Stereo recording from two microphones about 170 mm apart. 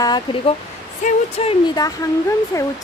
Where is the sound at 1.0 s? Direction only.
35° left (ahead or behind).